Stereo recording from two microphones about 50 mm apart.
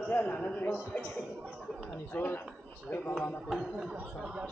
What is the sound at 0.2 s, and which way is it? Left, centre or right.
Speech, left.